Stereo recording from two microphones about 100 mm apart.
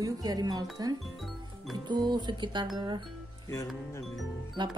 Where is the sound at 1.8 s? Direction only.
50° right (ahead or behind).